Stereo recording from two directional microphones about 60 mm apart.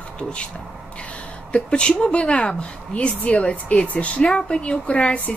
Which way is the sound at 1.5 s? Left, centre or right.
Centre.